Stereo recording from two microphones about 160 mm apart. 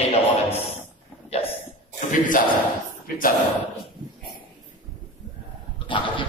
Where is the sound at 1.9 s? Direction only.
55° left (ahead or behind).